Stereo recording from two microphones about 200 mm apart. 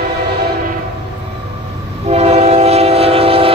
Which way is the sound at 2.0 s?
30° right (ahead or behind).